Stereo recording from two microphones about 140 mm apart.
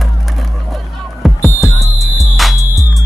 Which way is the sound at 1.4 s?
20° left (ahead or behind).